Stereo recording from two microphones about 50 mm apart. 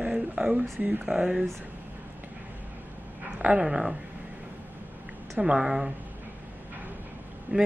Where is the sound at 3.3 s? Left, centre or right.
Right.